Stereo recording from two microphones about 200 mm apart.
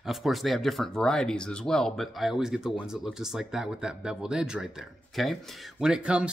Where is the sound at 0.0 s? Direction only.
Centre (ahead or behind).